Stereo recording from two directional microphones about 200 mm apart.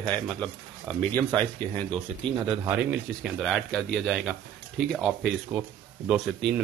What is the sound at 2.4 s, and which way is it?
Speech, 5° right (ahead or behind).